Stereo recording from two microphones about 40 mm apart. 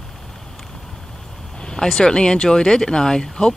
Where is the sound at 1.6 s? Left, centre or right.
Centre.